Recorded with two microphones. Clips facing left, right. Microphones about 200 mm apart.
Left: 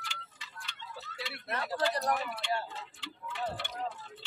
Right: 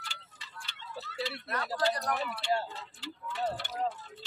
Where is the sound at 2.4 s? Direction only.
35° right (ahead or behind).